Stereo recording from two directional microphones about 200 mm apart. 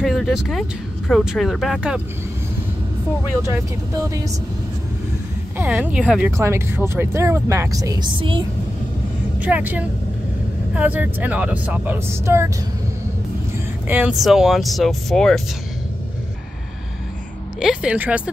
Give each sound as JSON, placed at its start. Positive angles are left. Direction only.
{"t": 0.0, "sound": "speech", "side_deg": 0}
{"t": 3.5, "sound": "speech", "side_deg": -15}
{"t": 5.6, "sound": "speech", "side_deg": -10}
{"t": 9.4, "sound": "speech", "side_deg": -10}
{"t": 13.8, "sound": "speech", "side_deg": -5}
{"t": 17.6, "sound": "speech", "side_deg": -5}